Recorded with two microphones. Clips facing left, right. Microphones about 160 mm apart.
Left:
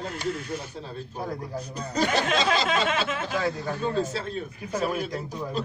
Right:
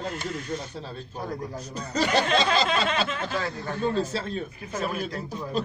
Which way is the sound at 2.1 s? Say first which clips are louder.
Right 3 dB; 5° left (ahead or behind).